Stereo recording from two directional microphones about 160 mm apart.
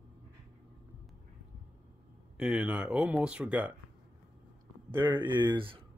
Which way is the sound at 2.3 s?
5° right (ahead or behind).